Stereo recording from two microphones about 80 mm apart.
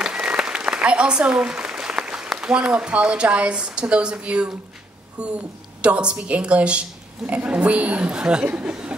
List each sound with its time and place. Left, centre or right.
0.0 s speech: centre